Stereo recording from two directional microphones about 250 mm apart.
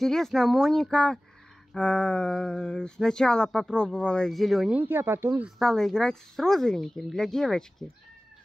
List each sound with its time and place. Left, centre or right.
0.0 s speech: centre
5.6 s speech: centre